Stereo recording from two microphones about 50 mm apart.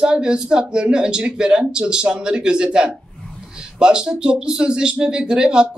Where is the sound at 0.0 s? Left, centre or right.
Centre.